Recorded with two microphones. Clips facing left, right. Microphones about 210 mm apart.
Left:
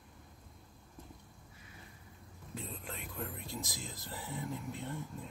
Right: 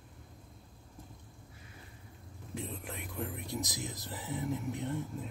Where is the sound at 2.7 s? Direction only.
15° right (ahead or behind).